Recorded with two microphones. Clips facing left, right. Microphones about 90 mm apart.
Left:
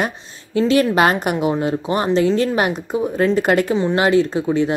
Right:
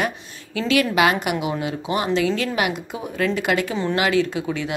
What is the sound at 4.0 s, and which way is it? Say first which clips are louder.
Speech: left 3 dB; 35° left (ahead or behind).